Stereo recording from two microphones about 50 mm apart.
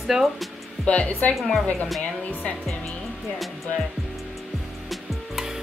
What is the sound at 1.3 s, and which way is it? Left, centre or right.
Speech, centre.